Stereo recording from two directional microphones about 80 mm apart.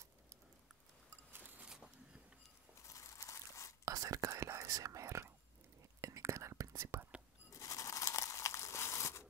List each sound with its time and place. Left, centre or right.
1.3 s a sound: right
2.9 s crunch: left
3.8 s whispering: right
7.5 s crumpling: left